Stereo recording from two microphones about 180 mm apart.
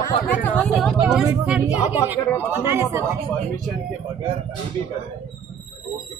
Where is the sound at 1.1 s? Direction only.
10° right (ahead or behind).